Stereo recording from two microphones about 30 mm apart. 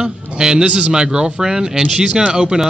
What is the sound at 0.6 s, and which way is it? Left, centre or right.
Speech, right.